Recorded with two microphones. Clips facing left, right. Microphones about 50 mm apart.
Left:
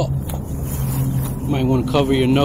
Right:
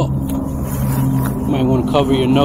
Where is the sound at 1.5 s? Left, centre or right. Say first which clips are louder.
Right 2 dB; centre.